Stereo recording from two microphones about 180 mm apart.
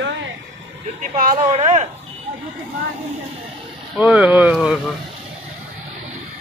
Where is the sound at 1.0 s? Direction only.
45° right (ahead or behind).